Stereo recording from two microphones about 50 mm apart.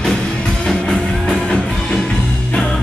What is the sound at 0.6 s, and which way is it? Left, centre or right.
Music, centre.